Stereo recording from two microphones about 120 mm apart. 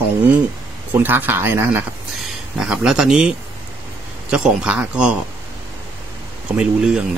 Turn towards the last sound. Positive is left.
turn(degrees=-5)  # may be behind; listen again after turning